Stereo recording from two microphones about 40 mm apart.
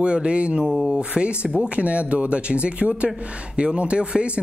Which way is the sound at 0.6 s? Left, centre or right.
Centre.